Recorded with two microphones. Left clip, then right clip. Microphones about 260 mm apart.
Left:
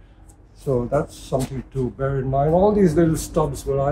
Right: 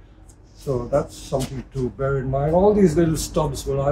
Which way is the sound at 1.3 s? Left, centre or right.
Left.